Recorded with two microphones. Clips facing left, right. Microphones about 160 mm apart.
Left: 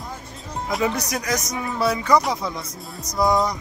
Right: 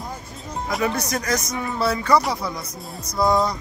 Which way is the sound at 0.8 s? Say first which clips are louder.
Right 1 dB; 15° left (ahead or behind).